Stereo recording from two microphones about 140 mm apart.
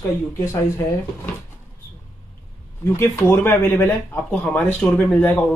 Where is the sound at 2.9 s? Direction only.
20° left (ahead or behind).